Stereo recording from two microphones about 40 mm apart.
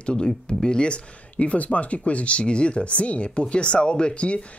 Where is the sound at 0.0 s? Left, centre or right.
Left.